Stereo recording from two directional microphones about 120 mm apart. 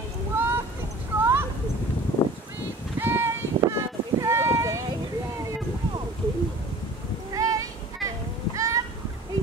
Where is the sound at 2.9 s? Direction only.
20° right (ahead or behind).